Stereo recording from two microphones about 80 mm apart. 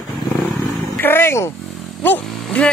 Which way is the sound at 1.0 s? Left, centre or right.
Left.